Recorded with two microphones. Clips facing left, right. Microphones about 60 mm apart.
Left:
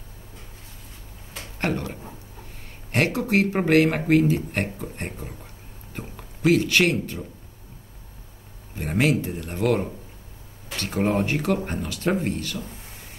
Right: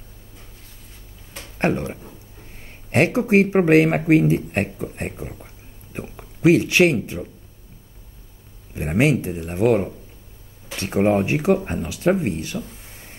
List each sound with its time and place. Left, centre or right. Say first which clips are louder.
1.6 s speech: right 5 dB; right
8.7 s speech: right 3 dB; right